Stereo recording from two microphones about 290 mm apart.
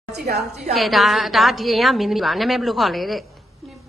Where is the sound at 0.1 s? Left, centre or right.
Right.